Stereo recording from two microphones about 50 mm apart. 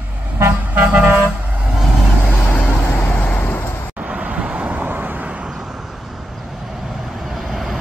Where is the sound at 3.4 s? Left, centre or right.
Left.